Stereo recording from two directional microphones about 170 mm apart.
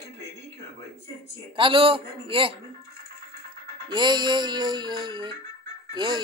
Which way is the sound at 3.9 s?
25° right (ahead or behind).